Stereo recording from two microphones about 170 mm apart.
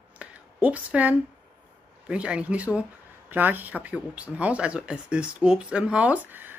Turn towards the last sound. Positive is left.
turn(degrees=-10)  # may be behind; listen again after turning